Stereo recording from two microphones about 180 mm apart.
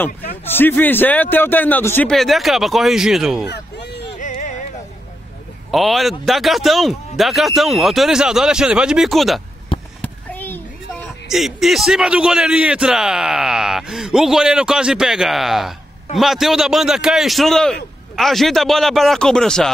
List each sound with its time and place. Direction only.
0.5 s a man's voice: 10° left (ahead or behind)
3.4 s a sound: 70° left (ahead or behind)
4.2 s music: 45° left (ahead or behind)
5.7 s a man's voice: centre (ahead or behind)
10.0 s a sound: 10° left (ahead or behind)
11.2 s a man's voice: centre (ahead or behind)